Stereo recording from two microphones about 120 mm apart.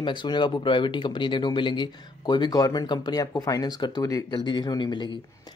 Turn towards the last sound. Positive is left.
turn(degrees=40)  # may be behind; listen again after turning